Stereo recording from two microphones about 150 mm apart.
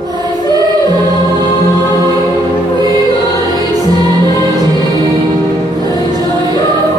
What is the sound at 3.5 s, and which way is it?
Music, 25° right (ahead or behind).